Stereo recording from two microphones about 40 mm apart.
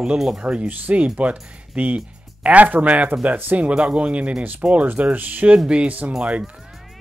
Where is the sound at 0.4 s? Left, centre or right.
Right.